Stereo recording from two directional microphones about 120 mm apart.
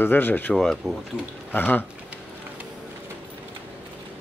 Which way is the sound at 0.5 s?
5° left (ahead or behind).